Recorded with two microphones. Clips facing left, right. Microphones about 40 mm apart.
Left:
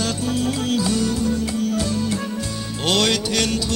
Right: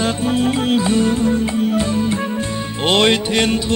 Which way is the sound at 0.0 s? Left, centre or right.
Right.